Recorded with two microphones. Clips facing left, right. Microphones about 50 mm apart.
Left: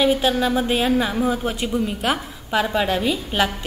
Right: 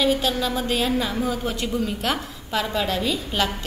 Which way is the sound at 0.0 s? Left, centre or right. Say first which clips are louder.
Left 3 dB; left.